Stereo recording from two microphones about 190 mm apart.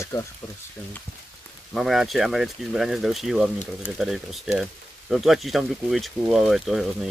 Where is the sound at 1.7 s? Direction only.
Centre (ahead or behind).